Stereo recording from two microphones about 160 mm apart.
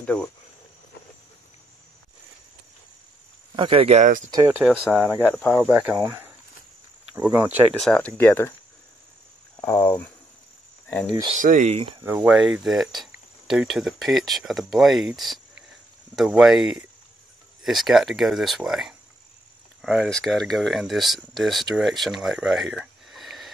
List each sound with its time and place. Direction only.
0.0 s speech: 5° left (ahead or behind)
3.5 s speech: 35° right (ahead or behind)
4.3 s speech: 25° right (ahead or behind)
4.6 s speech: 10° right (ahead or behind)
5.3 s speech: centre (ahead or behind)
5.6 s speech: 15° right (ahead or behind)
7.8 s speech: 5° left (ahead or behind)
9.6 s speech: 20° left (ahead or behind)
11.3 s speech: 50° right (ahead or behind)
11.7 s speech: 35° right (ahead or behind)
12.0 s speech: 10° right (ahead or behind)